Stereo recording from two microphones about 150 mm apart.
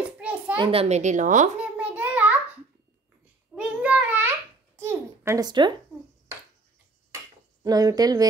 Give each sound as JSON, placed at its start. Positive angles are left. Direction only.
{"t": 0.0, "sound": "a sound", "side_deg": -10}
{"t": 0.6, "sound": "a woman's voice", "side_deg": -40}
{"t": 1.6, "sound": "a sound", "side_deg": -10}
{"t": 3.5, "sound": "babbling", "side_deg": -5}
{"t": 5.5, "sound": "speech", "side_deg": -30}
{"t": 7.6, "sound": "speech", "side_deg": -25}